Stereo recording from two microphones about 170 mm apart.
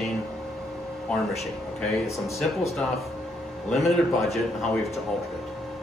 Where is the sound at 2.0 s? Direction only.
15° left (ahead or behind).